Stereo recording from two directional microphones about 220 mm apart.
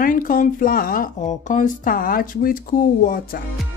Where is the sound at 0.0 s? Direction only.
40° left (ahead or behind).